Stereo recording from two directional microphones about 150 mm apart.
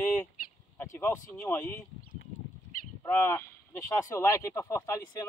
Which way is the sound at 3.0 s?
15° left (ahead or behind).